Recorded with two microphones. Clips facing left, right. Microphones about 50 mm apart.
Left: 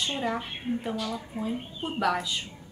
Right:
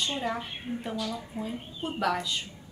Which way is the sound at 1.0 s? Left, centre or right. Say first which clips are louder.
Left 1 dB; left.